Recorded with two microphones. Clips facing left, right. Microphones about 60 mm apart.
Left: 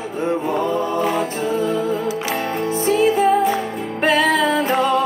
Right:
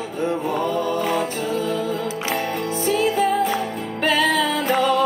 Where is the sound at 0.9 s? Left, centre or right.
Left.